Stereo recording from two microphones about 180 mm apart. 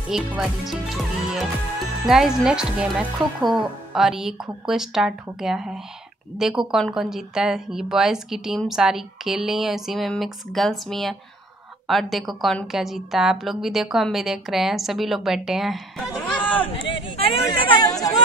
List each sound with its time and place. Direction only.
0.1 s a woman's voice: 5° right (ahead or behind)
16.6 s chatter: 30° left (ahead or behind)